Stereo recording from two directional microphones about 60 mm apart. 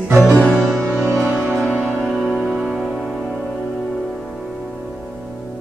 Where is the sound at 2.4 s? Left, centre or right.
Centre.